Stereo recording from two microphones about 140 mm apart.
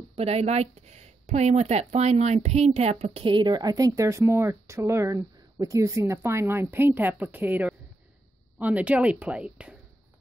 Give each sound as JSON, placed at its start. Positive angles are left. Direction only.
{"t": 0.1, "sound": "speech", "side_deg": -50}